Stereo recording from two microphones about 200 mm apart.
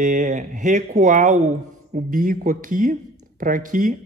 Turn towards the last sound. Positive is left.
turn(degrees=-40)  # may be behind; listen again after turning